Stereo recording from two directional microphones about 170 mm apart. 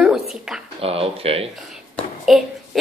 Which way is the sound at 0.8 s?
35° right (ahead or behind).